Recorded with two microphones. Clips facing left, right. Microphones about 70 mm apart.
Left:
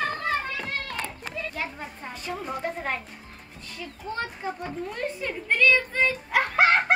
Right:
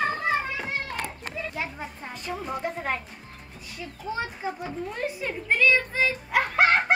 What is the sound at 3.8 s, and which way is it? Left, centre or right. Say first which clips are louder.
Children playing: right 1 dB; centre.